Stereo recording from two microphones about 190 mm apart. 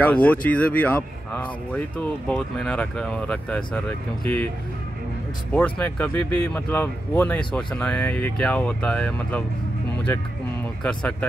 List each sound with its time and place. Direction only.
0.0 s speech: 5° left (ahead or behind)
5.5 s speech: 5° left (ahead or behind)
10.8 s speech: 5° left (ahead or behind)